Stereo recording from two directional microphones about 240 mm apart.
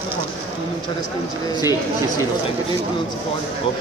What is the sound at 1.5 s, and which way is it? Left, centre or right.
Speech, centre.